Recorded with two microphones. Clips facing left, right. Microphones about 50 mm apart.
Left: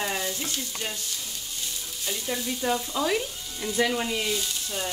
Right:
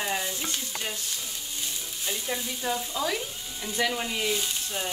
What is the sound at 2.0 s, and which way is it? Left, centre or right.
Stir, centre.